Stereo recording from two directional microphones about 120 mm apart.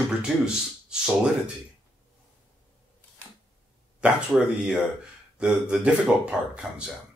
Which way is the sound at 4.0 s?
5° right (ahead or behind).